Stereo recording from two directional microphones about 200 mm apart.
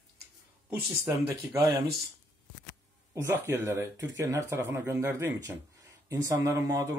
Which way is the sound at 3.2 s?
10° right (ahead or behind).